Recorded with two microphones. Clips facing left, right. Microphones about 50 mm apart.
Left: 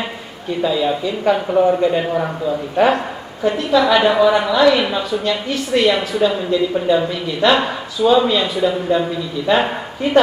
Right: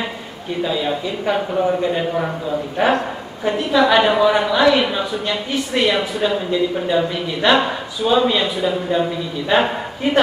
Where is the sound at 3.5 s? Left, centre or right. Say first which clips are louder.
Left 1 dB; centre.